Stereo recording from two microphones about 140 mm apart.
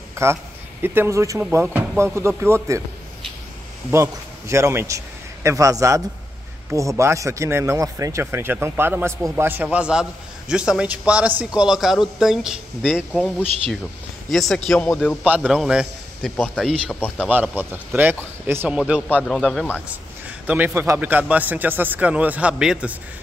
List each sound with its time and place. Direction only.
0.1 s a sound: 20° right (ahead or behind)
0.8 s a man's voice: 15° right (ahead or behind)
3.9 s a man's voice: 20° right (ahead or behind); by 13.0 s 5° right (ahead or behind)
13.1 s a man's voice: 10° left (ahead or behind)
16.9 s speech: 15° left (ahead or behind)
17.3 s a man's voice: 10° right (ahead or behind)
20.4 s a man's voice: 15° right (ahead or behind)